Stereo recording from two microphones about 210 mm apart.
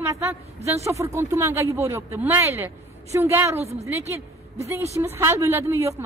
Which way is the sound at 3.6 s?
30° right (ahead or behind).